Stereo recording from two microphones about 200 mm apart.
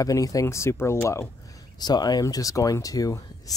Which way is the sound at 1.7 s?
20° left (ahead or behind).